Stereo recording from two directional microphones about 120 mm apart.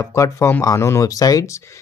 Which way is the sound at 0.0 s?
25° left (ahead or behind).